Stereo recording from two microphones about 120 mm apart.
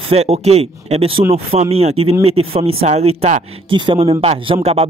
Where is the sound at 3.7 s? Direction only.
45° right (ahead or behind).